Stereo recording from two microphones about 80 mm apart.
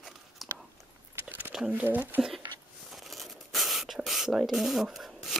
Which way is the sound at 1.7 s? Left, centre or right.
Right.